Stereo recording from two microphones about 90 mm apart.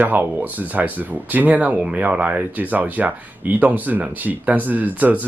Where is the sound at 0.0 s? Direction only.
20° right (ahead or behind).